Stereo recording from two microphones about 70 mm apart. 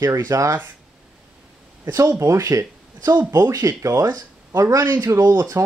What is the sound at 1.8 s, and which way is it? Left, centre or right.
Speech, right.